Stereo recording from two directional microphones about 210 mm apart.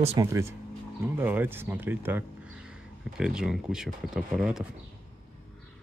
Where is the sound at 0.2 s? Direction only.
15° right (ahead or behind).